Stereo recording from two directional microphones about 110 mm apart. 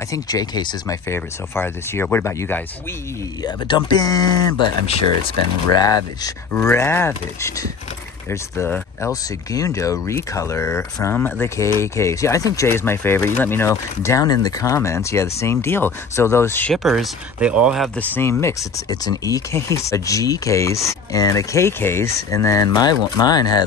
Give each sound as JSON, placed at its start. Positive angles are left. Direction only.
{"t": 0.1, "sound": "speech", "side_deg": 35}
{"t": 0.8, "sound": "speech", "side_deg": 25}
{"t": 3.4, "sound": "speech", "side_deg": 40}
{"t": 4.8, "sound": "speech", "side_deg": 65}
{"t": 5.8, "sound": "speech", "side_deg": 35}
{"t": 6.5, "sound": "speech", "side_deg": 20}
{"t": 16.7, "sound": "speech", "side_deg": 0}
{"t": 17.9, "sound": "speech", "side_deg": 15}
{"t": 18.9, "sound": "speech", "side_deg": 35}